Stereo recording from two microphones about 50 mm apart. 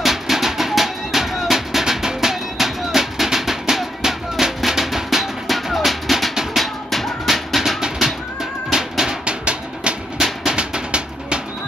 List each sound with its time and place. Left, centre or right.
0.0 s music: centre
8.6 s a sound: centre
10.1 s music: centre